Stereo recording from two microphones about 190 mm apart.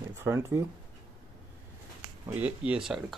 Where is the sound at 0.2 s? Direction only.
15° right (ahead or behind).